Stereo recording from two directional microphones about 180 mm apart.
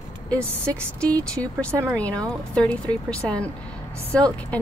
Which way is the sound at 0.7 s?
5° left (ahead or behind).